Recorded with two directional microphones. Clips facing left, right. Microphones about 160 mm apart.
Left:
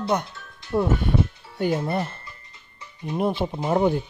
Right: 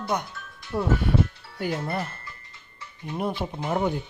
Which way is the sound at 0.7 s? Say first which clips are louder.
Left 2 dB; 20° left (ahead or behind).